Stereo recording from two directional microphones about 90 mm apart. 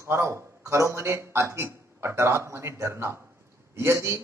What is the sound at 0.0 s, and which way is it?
A man's voice, 30° right (ahead or behind).